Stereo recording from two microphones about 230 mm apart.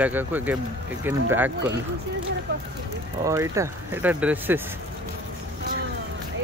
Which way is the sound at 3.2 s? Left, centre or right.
Centre.